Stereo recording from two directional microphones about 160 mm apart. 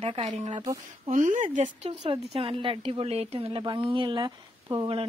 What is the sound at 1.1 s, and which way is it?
Speech, 55° right (ahead or behind).